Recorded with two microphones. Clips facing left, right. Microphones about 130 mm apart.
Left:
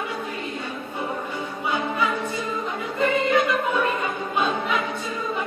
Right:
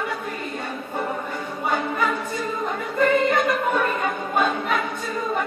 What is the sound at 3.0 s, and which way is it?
Music, 50° right (ahead or behind).